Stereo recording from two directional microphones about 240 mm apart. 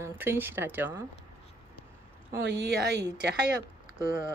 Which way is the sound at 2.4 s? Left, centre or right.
Right.